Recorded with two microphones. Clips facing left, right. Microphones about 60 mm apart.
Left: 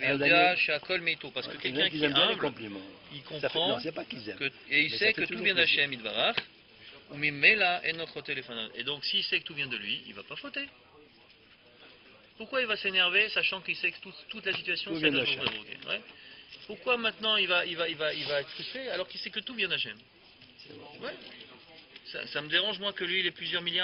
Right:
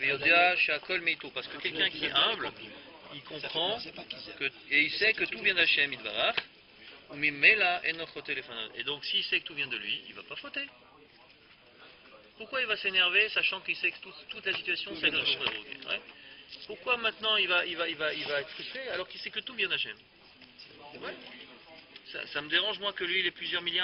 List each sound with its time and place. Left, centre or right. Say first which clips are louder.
0.0 s speech: left 1 dB; centre
3.7 s speech: left 5 dB; left
4.4 s speech: right 1 dB; centre
12.4 s speech: left 2 dB; centre
21.0 s speech: left 1 dB; centre